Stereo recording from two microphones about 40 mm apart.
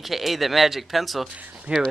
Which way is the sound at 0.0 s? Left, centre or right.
Centre.